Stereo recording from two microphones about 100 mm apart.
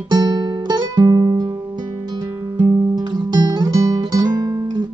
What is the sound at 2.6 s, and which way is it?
Guitar, 45° right (ahead or behind).